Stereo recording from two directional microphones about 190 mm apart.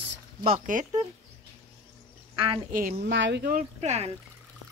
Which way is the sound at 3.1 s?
65° right (ahead or behind).